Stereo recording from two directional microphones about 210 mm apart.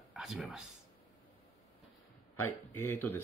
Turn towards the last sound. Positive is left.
turn(degrees=10)  # may be behind; listen again after turning